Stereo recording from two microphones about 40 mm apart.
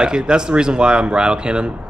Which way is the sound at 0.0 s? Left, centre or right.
Right.